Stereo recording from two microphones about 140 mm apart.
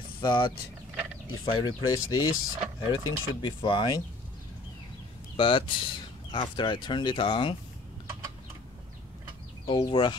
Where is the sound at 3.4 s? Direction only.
35° left (ahead or behind).